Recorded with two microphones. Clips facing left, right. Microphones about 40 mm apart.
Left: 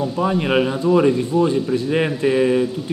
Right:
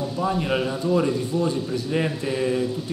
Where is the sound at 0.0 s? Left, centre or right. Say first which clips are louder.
Left 5 dB; left.